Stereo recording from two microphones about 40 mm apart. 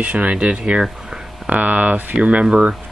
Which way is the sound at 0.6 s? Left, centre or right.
Right.